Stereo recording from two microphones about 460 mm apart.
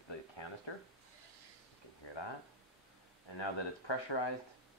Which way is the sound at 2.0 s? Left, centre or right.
Left.